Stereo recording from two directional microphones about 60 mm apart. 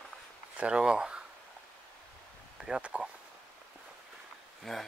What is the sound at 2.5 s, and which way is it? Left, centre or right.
Speech, centre.